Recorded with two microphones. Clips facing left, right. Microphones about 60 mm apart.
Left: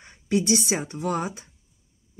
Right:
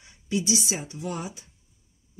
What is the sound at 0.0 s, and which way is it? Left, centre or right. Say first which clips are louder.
Speech: left 4 dB; left.